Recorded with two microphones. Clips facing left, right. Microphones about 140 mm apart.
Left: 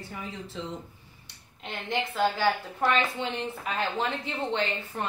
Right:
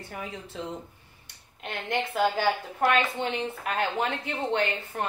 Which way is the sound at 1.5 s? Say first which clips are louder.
Right 1 dB; 55° right (ahead or behind).